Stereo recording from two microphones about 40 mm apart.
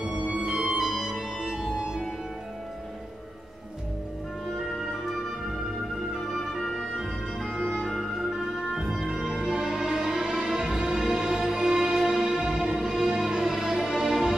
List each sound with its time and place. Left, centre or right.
0.0 s music: right
7.8 s music: centre
8.5 s music: centre